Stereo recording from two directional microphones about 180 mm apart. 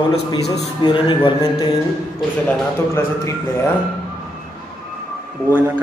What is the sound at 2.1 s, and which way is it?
A man's voice, 10° left (ahead or behind).